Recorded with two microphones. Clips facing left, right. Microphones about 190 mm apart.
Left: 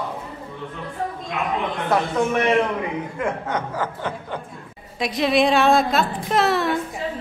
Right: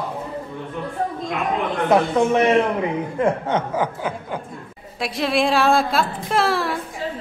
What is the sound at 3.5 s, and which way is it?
Speech, 25° right (ahead or behind).